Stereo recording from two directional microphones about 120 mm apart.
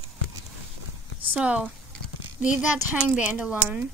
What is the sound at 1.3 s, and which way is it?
A woman's voice, 10° right (ahead or behind).